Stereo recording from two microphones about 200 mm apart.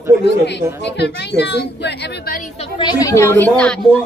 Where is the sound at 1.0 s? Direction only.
60° left (ahead or behind).